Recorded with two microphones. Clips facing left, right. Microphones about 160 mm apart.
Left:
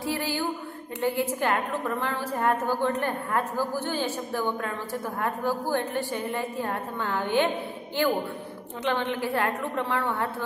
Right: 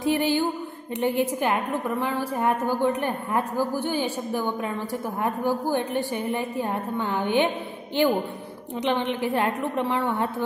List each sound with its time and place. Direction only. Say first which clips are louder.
0.0 s music: right 6 dB; 20° right (ahead or behind)
1.0 s a woman's voice: right 2 dB; 15° right (ahead or behind)